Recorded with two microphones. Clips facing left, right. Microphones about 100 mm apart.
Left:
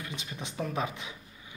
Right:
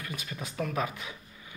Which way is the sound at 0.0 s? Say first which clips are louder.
Right 1 dB; 25° left (ahead or behind).